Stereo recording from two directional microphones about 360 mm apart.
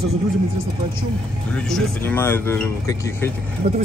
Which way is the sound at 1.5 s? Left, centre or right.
Centre.